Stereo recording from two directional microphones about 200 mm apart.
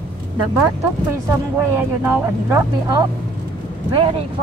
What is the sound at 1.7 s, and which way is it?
Speech, 10° right (ahead or behind).